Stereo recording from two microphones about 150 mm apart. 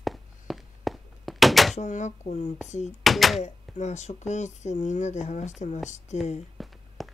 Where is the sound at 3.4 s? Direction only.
50° left (ahead or behind).